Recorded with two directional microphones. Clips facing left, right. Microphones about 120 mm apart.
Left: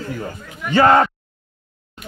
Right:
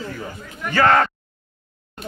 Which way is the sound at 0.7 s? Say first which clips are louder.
Left 3 dB; 20° left (ahead or behind).